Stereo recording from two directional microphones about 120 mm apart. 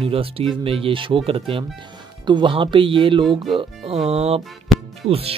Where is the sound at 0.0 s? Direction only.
50° right (ahead or behind).